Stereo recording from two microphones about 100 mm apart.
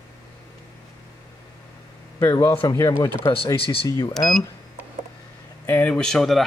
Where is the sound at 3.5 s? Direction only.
65° left (ahead or behind).